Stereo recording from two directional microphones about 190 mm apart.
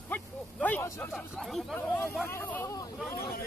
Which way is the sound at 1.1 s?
Centre (ahead or behind).